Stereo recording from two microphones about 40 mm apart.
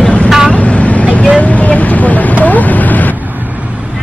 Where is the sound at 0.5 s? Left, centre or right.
Left.